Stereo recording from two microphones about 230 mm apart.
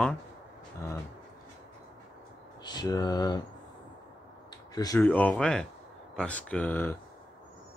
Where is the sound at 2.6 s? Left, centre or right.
Centre.